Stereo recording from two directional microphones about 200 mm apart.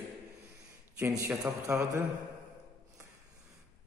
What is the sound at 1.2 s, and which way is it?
Speech, 15° right (ahead or behind).